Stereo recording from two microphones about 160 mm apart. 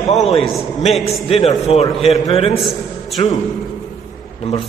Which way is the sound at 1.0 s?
40° left (ahead or behind).